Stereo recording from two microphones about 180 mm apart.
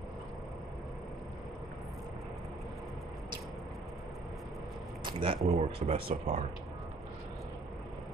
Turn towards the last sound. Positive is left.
turn(degrees=-35)  # may be behind; listen again after turning